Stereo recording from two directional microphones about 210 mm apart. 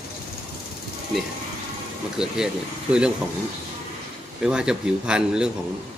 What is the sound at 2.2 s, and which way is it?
Speech, 5° right (ahead or behind).